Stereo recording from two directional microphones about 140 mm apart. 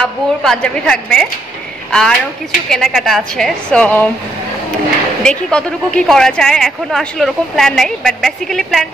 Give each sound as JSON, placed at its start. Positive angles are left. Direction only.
{"t": 0.0, "sound": "a woman's voice", "side_deg": 5}
{"t": 5.2, "sound": "a woman's voice", "side_deg": 5}